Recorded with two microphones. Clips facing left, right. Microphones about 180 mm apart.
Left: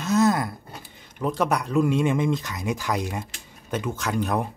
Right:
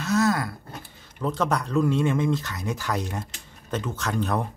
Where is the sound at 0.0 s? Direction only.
20° left (ahead or behind).